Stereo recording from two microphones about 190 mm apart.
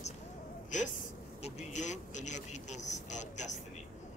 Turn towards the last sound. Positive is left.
turn(degrees=40)  # may be behind; listen again after turning